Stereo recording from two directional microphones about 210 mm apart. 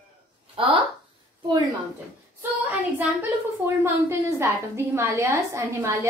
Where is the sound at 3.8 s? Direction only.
15° right (ahead or behind).